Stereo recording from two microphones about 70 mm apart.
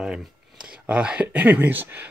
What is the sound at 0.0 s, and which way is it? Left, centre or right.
Speech, centre.